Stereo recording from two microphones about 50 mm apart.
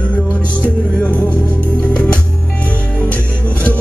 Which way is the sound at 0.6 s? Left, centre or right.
Left.